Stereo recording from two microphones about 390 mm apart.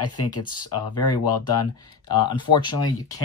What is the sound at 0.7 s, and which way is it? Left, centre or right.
Speech, left.